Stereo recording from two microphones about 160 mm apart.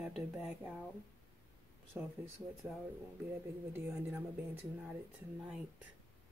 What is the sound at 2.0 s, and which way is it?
Speech, 10° right (ahead or behind).